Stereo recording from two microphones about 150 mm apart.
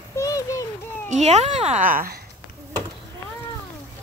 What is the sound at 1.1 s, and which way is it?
A child's voice, 50° right (ahead or behind).